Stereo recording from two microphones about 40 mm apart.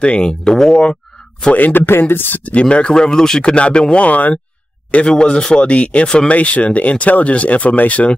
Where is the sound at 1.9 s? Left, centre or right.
Left.